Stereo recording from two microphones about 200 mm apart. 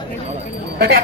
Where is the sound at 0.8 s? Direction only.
50° right (ahead or behind).